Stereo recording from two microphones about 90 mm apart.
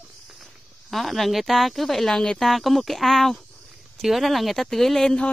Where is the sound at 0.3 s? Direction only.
Centre (ahead or behind).